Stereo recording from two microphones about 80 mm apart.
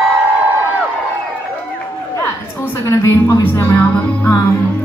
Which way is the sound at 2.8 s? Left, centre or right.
Left.